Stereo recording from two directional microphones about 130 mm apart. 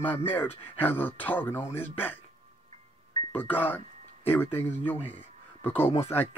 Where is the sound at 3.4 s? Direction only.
15° left (ahead or behind).